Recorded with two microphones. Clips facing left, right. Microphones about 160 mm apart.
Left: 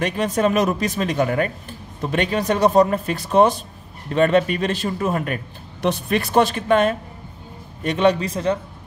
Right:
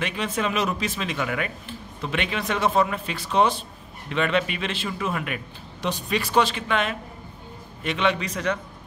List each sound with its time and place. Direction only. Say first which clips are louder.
0.0 s speech: left 7 dB; 45° left (ahead or behind)
5.8 s a man's voice: left 6 dB; 55° left (ahead or behind); by 8.5 s 35° left (ahead or behind)